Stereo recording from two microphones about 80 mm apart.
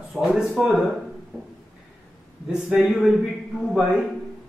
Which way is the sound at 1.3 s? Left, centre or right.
Centre.